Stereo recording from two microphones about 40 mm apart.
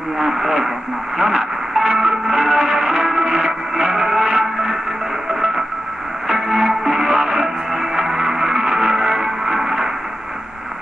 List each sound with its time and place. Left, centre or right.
0.2 s speech: centre
1.1 s music: centre
6.2 s music: centre